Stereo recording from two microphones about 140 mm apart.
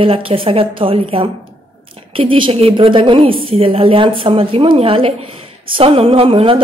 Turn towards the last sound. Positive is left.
turn(degrees=-40)  # may be behind; listen again after turning